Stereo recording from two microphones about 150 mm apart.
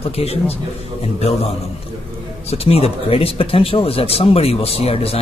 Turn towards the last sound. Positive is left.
turn(degrees=40)  # may be behind; listen again after turning